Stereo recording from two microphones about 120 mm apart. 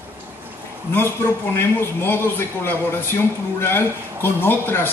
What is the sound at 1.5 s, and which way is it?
A man's voice, 20° left (ahead or behind).